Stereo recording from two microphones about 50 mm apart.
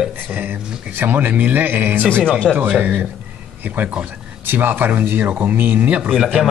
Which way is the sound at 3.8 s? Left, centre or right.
Right.